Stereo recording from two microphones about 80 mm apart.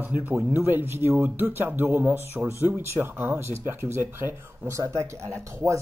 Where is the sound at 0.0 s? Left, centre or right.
Right.